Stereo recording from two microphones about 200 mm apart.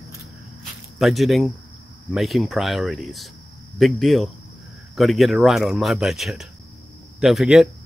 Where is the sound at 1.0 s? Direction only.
Centre (ahead or behind).